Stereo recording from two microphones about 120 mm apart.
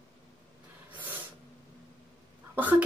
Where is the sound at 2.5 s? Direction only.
15° right (ahead or behind).